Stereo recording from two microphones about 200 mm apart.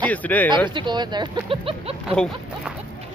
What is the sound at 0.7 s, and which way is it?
Speech, 25° right (ahead or behind).